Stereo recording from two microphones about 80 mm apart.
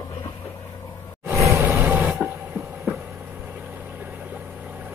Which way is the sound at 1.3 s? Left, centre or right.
Right.